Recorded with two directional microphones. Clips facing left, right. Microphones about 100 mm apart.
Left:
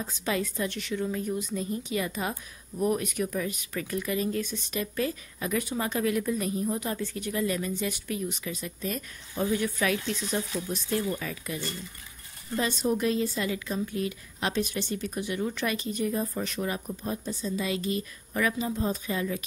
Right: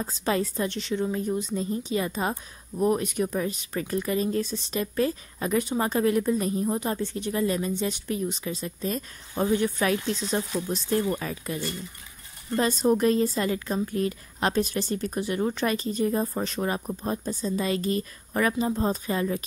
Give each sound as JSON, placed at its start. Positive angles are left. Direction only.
{"t": 0.0, "sound": "a woman's voice", "side_deg": -35}